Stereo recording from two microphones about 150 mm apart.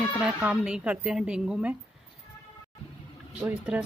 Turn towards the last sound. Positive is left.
turn(degrees=-10)  # may be behind; listen again after turning